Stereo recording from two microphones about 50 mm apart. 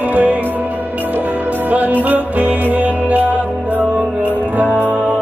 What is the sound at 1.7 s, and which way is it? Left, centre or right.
Music, right.